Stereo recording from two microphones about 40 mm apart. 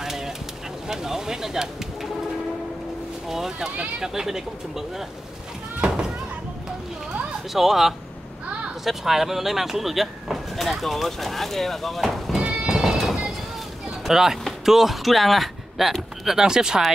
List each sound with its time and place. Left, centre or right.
0.0 s bird: centre
0.8 s speech: centre
3.3 s speech: centre
7.5 s speech: centre
12.4 s music: right
12.6 s music: centre
12.9 s music: centre
14.0 s speech: centre